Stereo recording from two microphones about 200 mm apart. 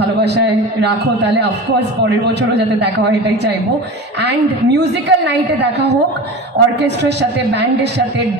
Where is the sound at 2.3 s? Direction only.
55° right (ahead or behind).